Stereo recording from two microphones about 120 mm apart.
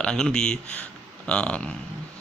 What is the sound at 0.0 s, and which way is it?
Speech, 5° left (ahead or behind).